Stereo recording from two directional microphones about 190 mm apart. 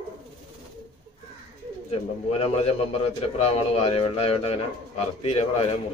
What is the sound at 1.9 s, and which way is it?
A man's voice, 35° left (ahead or behind).